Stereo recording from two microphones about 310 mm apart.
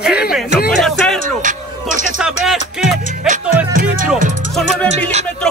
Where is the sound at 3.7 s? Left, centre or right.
Right.